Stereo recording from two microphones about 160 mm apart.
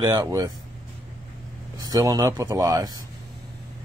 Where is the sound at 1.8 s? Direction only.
20° right (ahead or behind).